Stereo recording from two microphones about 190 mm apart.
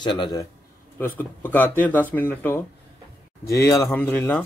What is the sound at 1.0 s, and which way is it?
Speech, 10° left (ahead or behind).